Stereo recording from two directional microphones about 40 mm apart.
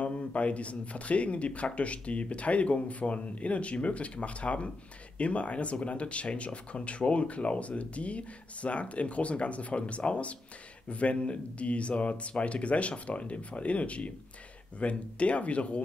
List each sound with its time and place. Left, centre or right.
0.0 s speech: left